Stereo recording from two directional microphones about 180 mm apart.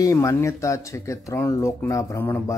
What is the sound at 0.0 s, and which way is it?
Speech, 15° left (ahead or behind).